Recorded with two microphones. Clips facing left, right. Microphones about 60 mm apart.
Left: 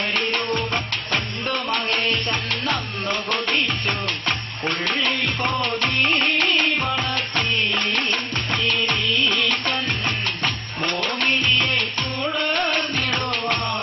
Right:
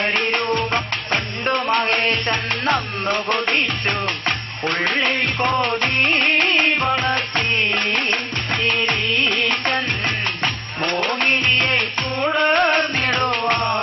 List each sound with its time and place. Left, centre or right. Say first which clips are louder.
0.7 s music: right 3 dB; right
6.8 s music: right 5 dB; right
7.3 s music: right 2 dB; right